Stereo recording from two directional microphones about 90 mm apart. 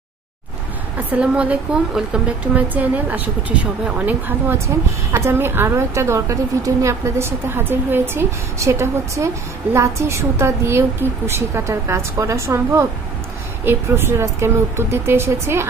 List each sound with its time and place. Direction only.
0.9 s a woman's voice: 15° right (ahead or behind)